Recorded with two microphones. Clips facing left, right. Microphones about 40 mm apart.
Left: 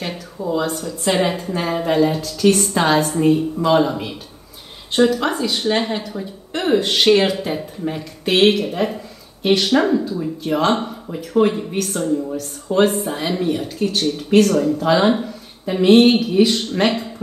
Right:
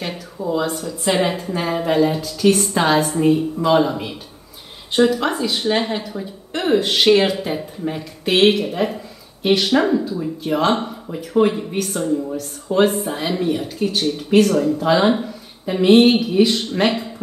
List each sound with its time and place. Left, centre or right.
0.0 s a woman's voice: centre